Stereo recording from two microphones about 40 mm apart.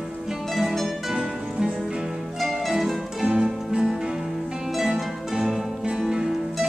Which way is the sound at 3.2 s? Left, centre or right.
Right.